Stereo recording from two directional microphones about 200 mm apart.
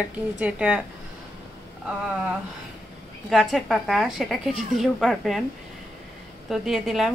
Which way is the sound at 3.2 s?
Centre (ahead or behind).